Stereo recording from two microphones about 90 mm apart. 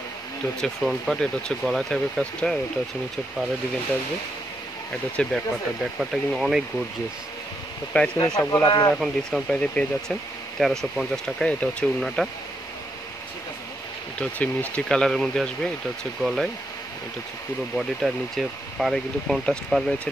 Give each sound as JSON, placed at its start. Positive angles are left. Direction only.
{"t": 0.6, "sound": "speech", "side_deg": 0}
{"t": 5.2, "sound": "speech", "side_deg": 10}
{"t": 5.9, "sound": "speech", "side_deg": -5}
{"t": 7.9, "sound": "speech", "side_deg": 20}
{"t": 8.6, "sound": "speech", "side_deg": 55}
{"t": 8.9, "sound": "speech", "side_deg": 0}
{"t": 9.5, "sound": "speech", "side_deg": 10}
{"t": 10.6, "sound": "speech", "side_deg": 0}
{"t": 14.2, "sound": "speech", "side_deg": 15}
{"t": 16.2, "sound": "speech", "side_deg": -5}
{"t": 17.7, "sound": "speech", "side_deg": 0}